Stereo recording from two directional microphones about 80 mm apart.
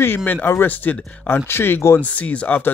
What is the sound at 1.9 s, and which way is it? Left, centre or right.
Speech, centre.